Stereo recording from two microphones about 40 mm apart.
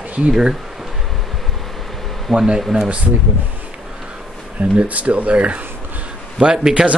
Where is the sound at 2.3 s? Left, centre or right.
Centre.